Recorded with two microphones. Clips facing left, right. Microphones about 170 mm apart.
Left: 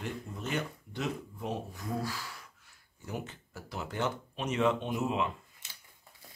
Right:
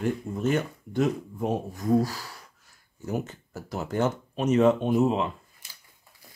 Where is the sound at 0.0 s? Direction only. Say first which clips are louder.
Right 12 dB; 45° right (ahead or behind).